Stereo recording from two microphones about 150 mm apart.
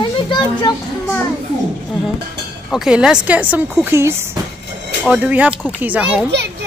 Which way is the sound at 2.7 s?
5° right (ahead or behind).